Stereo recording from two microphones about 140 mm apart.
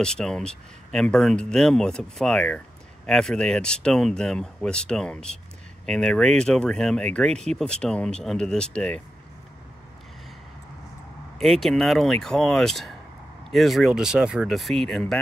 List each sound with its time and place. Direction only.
0.0 s speech: 5° left (ahead or behind)
11.3 s speech: 5° left (ahead or behind)